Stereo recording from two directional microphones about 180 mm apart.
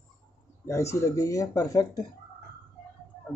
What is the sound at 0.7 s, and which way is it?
Speech, 15° left (ahead or behind).